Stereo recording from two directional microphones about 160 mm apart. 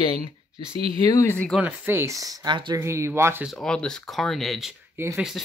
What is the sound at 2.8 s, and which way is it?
Speech, 15° right (ahead or behind).